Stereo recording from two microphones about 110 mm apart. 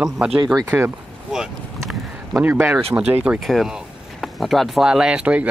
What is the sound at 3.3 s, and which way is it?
Speech, centre (ahead or behind).